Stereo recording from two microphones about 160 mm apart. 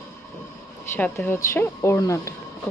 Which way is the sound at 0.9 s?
10° left (ahead or behind).